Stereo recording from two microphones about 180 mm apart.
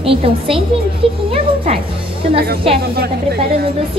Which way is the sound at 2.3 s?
60° right (ahead or behind).